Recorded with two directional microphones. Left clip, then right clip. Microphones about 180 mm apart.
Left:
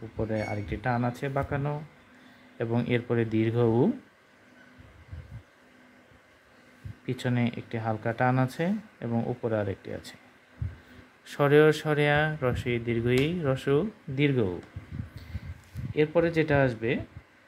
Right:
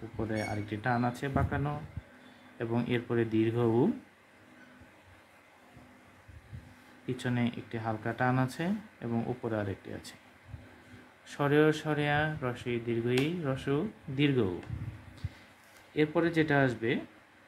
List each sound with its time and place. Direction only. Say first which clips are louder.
0.2 s speech: left 4 dB; 25° left (ahead or behind)
7.1 s speech: left 3 dB; 30° left (ahead or behind)
11.2 s speech: left 6 dB; 35° left (ahead or behind)
15.9 s speech: left 4 dB; 30° left (ahead or behind)